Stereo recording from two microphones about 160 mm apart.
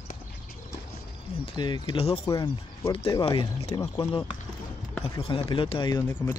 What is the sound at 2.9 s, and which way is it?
Speech, 35° left (ahead or behind).